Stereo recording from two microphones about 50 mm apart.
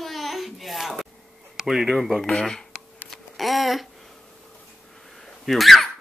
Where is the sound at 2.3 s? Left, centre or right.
Centre.